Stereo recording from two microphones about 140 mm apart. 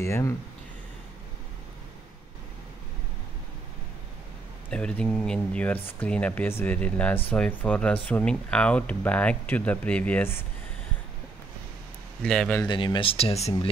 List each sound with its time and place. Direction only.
0.0 s speech: 20° left (ahead or behind)
4.6 s speech: 10° left (ahead or behind)
12.2 s speech: 5° left (ahead or behind)
12.6 s speech: 35° left (ahead or behind)